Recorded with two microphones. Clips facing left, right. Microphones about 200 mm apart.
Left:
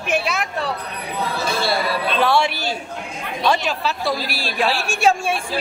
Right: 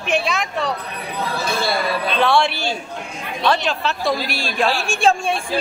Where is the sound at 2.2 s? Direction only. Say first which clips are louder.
Right 1 dB; 10° left (ahead or behind).